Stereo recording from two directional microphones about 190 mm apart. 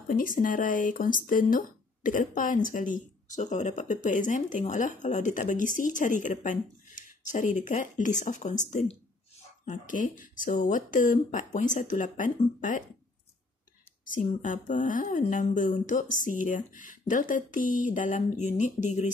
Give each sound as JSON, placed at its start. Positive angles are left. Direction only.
{"t": 0.1, "sound": "speech", "side_deg": 45}
{"t": 14.0, "sound": "speech", "side_deg": 45}